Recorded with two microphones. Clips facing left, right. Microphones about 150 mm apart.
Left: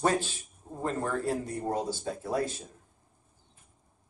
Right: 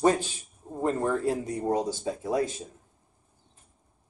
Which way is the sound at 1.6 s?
15° right (ahead or behind).